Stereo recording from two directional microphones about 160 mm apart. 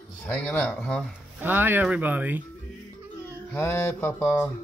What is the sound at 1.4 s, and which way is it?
Speech, 10° right (ahead or behind).